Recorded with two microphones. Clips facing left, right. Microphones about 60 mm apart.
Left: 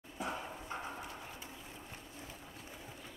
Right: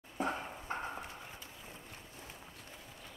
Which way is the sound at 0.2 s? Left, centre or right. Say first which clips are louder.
Right 4 dB; right.